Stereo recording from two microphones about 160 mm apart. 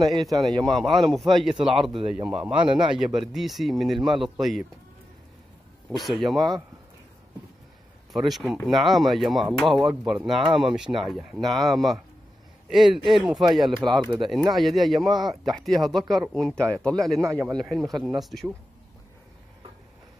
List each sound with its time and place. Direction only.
0.2 s a man's voice: centre (ahead or behind)
5.9 s speech: centre (ahead or behind)
8.1 s speech: centre (ahead or behind)
17.2 s a man's voice: 15° right (ahead or behind)
17.5 s speech: centre (ahead or behind)